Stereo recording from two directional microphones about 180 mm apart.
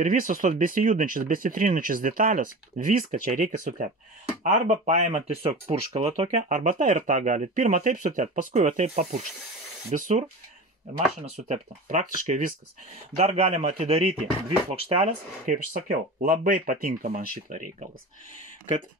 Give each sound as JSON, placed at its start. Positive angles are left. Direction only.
{"t": 0.0, "sound": "speech", "side_deg": -50}
{"t": 11.4, "sound": "speech", "side_deg": -45}